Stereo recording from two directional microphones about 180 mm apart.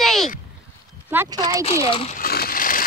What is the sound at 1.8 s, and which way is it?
Speech, 30° left (ahead or behind).